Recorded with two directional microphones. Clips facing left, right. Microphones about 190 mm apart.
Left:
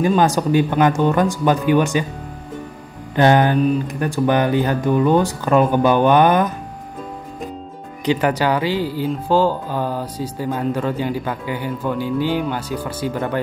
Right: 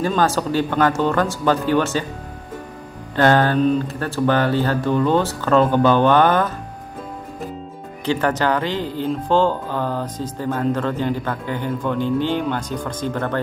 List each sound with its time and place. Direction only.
0.0 s speech: 15° left (ahead or behind)
3.2 s speech: 15° left (ahead or behind)
8.0 s speech: 15° left (ahead or behind)